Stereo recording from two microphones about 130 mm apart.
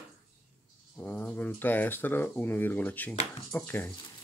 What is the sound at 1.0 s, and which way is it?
Speech, 15° left (ahead or behind).